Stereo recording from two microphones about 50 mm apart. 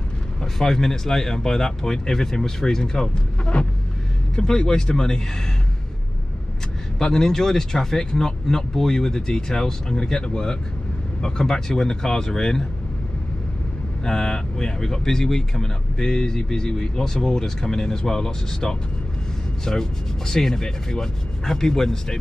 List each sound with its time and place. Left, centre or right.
0.4 s speech: centre
7.0 s speech: centre
14.0 s speech: centre